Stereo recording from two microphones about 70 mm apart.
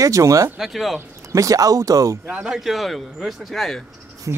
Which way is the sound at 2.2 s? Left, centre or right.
Centre.